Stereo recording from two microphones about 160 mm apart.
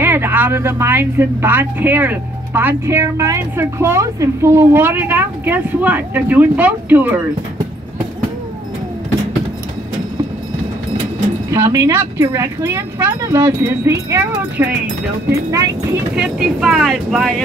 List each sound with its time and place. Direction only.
0.0 s speech: 15° right (ahead or behind)
11.5 s speech: 15° right (ahead or behind)
16.2 s speech: 5° right (ahead or behind)